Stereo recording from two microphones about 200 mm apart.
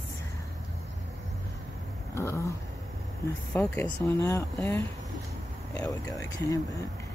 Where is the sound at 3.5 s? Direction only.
10° left (ahead or behind).